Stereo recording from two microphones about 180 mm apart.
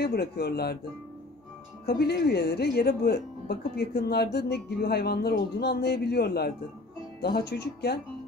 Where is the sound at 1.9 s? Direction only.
65° left (ahead or behind).